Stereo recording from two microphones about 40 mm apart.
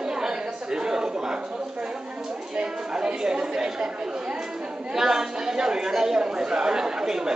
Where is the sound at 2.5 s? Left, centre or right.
Right.